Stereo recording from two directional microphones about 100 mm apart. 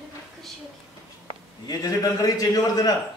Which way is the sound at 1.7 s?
40° left (ahead or behind).